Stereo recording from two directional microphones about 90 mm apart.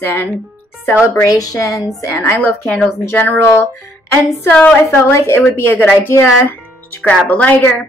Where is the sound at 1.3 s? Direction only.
40° left (ahead or behind).